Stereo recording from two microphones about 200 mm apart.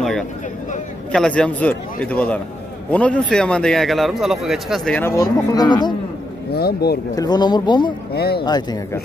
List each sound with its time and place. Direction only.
1.1 s a man's voice: 5° left (ahead or behind); by 5.9 s 20° left (ahead or behind)
6.5 s speech: 50° left (ahead or behind)
7.2 s speech: 20° left (ahead or behind)
8.1 s speech: 50° left (ahead or behind)
8.5 s speech: 20° left (ahead or behind)